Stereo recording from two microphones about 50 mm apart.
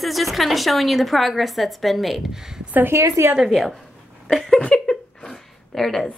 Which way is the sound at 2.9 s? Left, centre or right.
Right.